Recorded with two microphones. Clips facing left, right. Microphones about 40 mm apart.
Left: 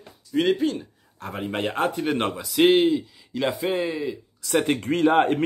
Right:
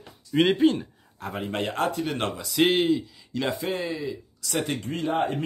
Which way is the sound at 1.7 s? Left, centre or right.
Left.